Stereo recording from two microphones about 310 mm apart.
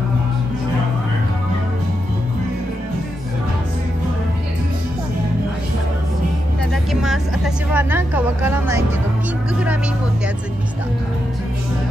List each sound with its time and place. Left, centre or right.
6.7 s vehicle: centre